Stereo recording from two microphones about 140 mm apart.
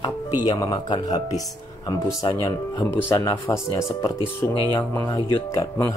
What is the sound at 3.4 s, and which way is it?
Speech, 20° left (ahead or behind).